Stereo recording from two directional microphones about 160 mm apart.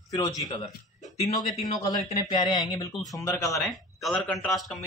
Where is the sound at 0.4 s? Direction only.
30° left (ahead or behind).